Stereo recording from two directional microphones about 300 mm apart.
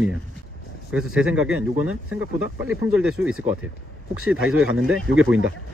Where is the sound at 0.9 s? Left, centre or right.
Centre.